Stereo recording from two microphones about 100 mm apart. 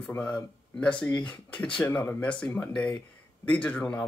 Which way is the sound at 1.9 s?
20° left (ahead or behind).